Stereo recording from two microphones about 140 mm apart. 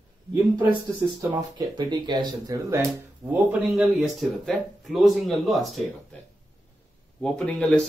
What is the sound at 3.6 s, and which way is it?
Speech, centre (ahead or behind).